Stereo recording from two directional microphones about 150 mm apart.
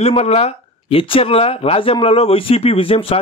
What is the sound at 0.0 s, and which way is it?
Speech, 45° left (ahead or behind).